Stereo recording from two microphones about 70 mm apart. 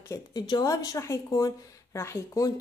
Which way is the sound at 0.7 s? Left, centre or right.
Left.